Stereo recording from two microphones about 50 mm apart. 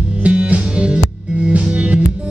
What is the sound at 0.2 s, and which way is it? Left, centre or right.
Music, right.